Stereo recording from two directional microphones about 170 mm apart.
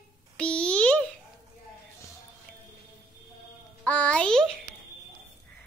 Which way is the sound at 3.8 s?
10° left (ahead or behind).